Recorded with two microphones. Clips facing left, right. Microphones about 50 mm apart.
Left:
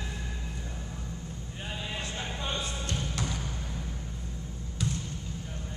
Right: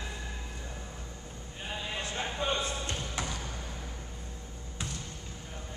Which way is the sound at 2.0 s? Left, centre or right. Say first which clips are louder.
Right 2 dB; right.